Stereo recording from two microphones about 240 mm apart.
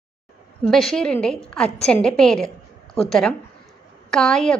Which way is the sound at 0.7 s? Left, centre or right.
Centre.